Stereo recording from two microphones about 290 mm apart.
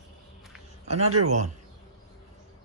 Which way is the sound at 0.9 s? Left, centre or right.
Right.